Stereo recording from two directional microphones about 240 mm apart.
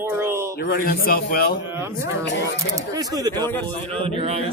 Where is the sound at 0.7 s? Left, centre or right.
Left.